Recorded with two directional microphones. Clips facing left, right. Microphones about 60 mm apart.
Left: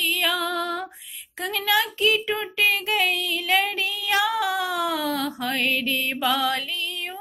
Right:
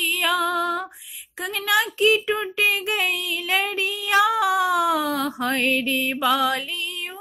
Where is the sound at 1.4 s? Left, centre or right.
Centre.